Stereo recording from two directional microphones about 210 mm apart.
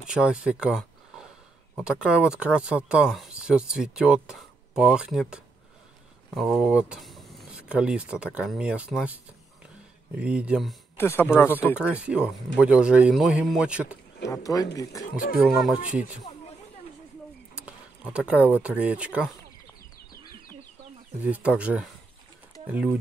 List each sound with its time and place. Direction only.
0.0 s speech: 5° right (ahead or behind)
11.0 s speech: 10° left (ahead or behind)
11.9 s speech: 5° right (ahead or behind)
14.2 s speech: 15° left (ahead or behind)
15.3 s speech: centre (ahead or behind)
17.6 s a sound: 5° right (ahead or behind)
18.5 s speech: 5° right (ahead or behind)
21.2 s speech: 5° right (ahead or behind)